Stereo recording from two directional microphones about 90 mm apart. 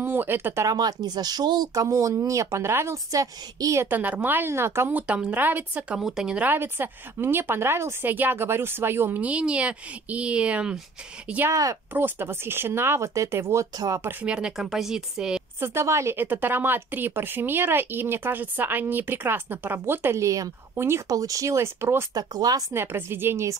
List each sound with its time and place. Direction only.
0.0 s speech: 25° right (ahead or behind)
0.7 s speech: 50° right (ahead or behind)
3.8 s speech: 20° right (ahead or behind)
4.9 s speech: 15° right (ahead or behind)
5.9 s speech: 5° right (ahead or behind)
11.4 s speech: 35° right (ahead or behind)
11.9 s speech: 25° right (ahead or behind)
14.2 s speech: 10° right (ahead or behind)
15.6 s speech: 30° right (ahead or behind)
22.1 s speech: 45° right (ahead or behind)
22.7 s speech: 25° right (ahead or behind)